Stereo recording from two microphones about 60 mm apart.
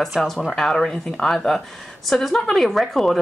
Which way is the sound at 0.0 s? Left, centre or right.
Centre.